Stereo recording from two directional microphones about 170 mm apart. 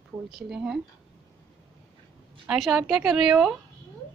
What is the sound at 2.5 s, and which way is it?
Speech, 5° right (ahead or behind).